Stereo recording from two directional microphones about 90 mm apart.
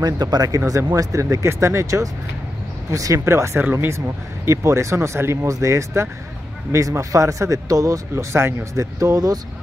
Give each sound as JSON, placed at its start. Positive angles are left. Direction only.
{"t": 0.0, "sound": "speech", "side_deg": -45}